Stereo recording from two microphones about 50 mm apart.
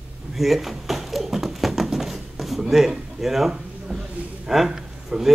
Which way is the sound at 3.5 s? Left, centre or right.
Centre.